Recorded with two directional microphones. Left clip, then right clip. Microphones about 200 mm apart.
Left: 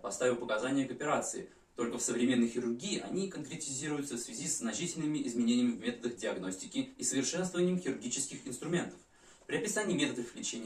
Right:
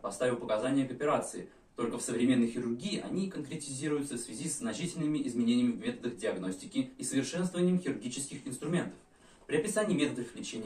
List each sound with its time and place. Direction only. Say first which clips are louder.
0.2 s speech: right 1 dB; centre (ahead or behind)